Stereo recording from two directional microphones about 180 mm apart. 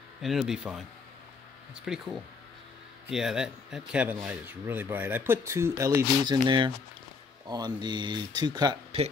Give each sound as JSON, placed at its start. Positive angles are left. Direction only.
{"t": 0.2, "sound": "speech", "side_deg": 0}
{"t": 1.9, "sound": "speech", "side_deg": -5}
{"t": 3.1, "sound": "speech", "side_deg": -5}